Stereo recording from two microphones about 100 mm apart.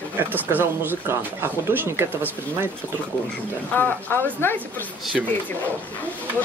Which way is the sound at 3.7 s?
20° left (ahead or behind).